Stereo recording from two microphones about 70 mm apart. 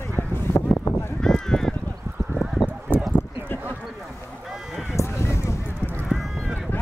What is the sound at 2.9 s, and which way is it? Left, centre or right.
Clip-clop, right.